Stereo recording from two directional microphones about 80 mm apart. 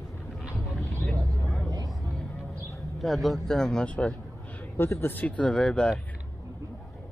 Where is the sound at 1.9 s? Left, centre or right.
Centre.